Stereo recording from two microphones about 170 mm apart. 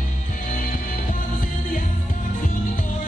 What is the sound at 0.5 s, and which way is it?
Music, 55° left (ahead or behind).